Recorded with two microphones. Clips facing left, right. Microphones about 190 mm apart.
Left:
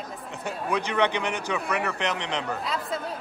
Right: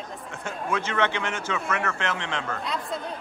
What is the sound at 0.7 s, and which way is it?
A man's voice, 15° left (ahead or behind).